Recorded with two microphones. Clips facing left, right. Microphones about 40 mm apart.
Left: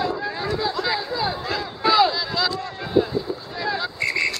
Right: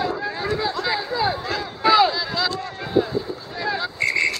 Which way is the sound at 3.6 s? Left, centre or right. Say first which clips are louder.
Right 2 dB; centre.